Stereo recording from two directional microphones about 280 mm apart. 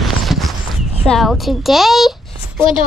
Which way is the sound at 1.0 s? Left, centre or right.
Centre.